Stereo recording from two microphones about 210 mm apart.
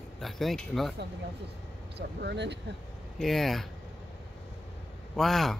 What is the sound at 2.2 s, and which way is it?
Speech, 55° right (ahead or behind).